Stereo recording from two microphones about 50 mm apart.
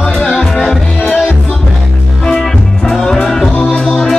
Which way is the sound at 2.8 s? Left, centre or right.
Centre.